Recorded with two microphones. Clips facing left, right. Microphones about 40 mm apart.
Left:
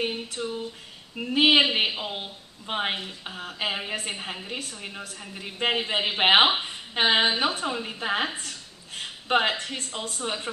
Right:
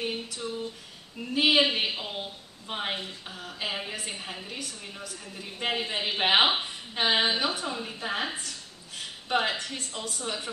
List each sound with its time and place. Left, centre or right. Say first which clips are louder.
0.0 s a sound: left 4 dB; left
1.1 s a woman's voice: left 4 dB; left
1.9 s a man's voice: left 2 dB; left